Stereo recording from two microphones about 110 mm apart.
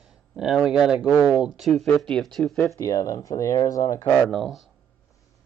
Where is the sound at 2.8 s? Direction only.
30° left (ahead or behind).